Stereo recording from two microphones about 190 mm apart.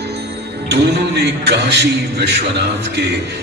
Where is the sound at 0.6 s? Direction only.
65° right (ahead or behind).